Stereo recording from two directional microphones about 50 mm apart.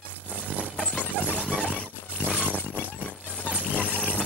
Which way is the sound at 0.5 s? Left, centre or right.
Left.